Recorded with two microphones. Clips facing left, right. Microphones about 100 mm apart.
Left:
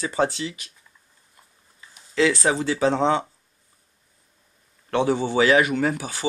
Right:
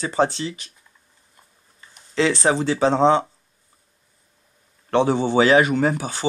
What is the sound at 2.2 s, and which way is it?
Speech, 30° right (ahead or behind).